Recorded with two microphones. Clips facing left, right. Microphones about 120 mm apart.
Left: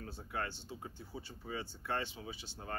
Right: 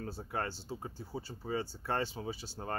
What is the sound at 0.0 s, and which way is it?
Speech, 35° right (ahead or behind).